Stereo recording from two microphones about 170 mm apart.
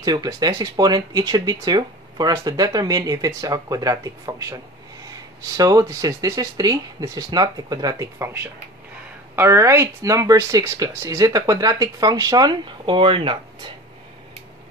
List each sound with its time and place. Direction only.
0.0 s speech: 25° right (ahead or behind)
5.6 s speech: 20° right (ahead or behind)